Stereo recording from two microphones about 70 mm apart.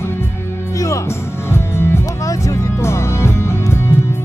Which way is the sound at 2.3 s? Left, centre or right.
Left.